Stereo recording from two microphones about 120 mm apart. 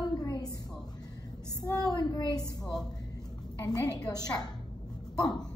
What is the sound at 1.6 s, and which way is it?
A child's voice, 30° left (ahead or behind).